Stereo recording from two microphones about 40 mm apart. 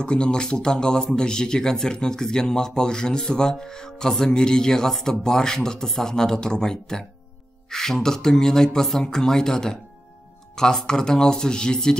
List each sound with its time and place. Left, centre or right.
0.0 s speech: left